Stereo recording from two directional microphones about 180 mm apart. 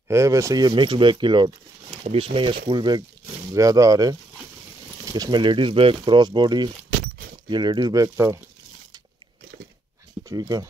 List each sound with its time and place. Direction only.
0.1 s speech: 15° right (ahead or behind)
10.2 s speech: 20° right (ahead or behind)